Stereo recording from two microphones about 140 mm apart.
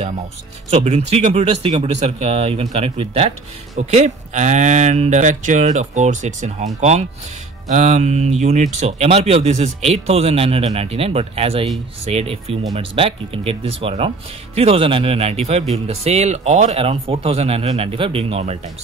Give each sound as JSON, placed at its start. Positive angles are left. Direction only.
{"t": 0.7, "sound": "speech", "side_deg": -50}